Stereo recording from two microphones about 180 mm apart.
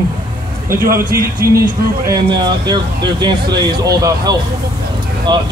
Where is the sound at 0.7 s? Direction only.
15° right (ahead or behind).